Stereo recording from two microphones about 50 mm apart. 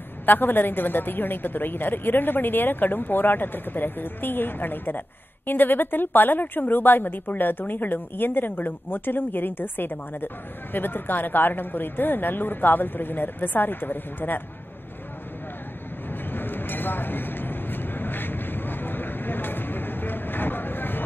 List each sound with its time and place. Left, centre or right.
0.2 s a woman's voice: left
16.3 s vehicle: left